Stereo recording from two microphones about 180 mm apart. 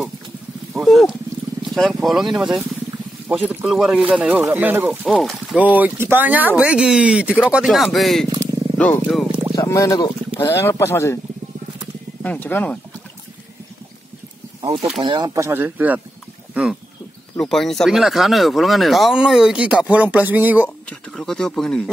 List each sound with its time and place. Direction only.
0.7 s speech: centre (ahead or behind)
5.1 s speech: centre (ahead or behind)
9.6 s speech: 20° left (ahead or behind)
12.2 s speech: 10° left (ahead or behind)
15.0 s speech: 25° right (ahead or behind); by 16.0 s 10° right (ahead or behind)
17.4 s speech: centre (ahead or behind)
20.9 s a sound: 5° left (ahead or behind)